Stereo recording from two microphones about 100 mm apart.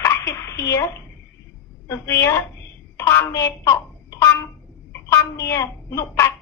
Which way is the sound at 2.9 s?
20° left (ahead or behind).